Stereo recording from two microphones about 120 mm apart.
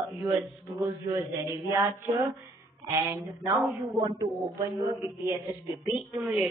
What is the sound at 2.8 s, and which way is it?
Speech, 25° right (ahead or behind).